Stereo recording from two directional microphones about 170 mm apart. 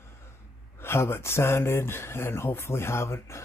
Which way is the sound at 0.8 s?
15° left (ahead or behind).